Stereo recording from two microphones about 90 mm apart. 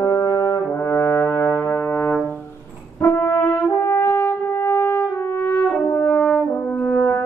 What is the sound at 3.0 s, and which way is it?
Brass instrument, 30° left (ahead or behind).